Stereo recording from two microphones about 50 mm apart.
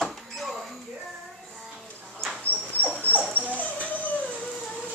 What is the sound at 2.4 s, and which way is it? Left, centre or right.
Dog, left.